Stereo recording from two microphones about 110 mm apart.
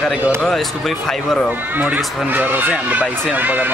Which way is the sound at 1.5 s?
15° right (ahead or behind).